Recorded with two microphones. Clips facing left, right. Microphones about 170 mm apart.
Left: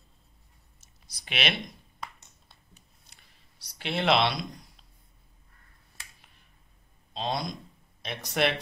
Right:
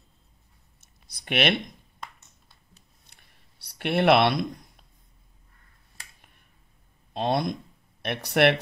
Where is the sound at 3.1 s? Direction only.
60° right (ahead or behind).